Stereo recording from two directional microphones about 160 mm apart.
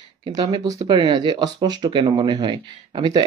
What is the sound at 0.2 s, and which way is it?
Speech, 30° right (ahead or behind).